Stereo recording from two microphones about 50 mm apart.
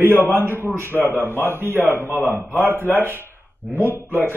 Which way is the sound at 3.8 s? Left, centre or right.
Right.